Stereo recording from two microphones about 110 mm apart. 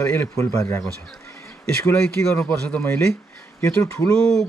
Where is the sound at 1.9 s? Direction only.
15° left (ahead or behind).